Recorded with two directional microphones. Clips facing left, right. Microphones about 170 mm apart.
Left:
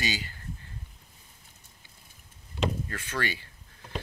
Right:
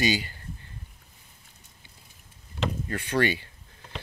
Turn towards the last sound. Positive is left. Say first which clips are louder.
# right 8 dB
turn(degrees=-25)  # may be behind; listen again after turning